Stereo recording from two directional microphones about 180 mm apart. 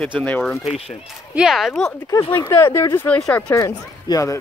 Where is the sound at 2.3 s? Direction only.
15° left (ahead or behind).